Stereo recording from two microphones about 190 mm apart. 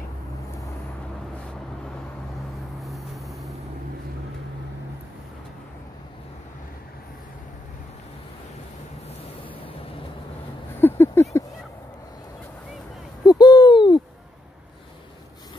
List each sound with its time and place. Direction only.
2.8 s vehicle: centre (ahead or behind)
10.8 s a sound: 10° left (ahead or behind)
13.2 s owl: 20° left (ahead or behind)